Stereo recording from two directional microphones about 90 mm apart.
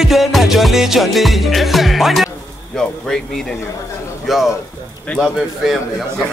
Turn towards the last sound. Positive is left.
turn(degrees=5)  # may be behind; listen again after turning